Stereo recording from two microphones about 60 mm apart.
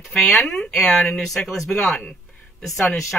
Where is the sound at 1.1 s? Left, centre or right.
Centre.